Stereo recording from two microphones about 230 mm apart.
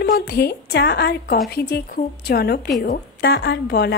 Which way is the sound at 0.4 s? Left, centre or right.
Left.